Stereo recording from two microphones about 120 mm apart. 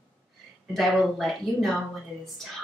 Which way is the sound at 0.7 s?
Centre (ahead or behind).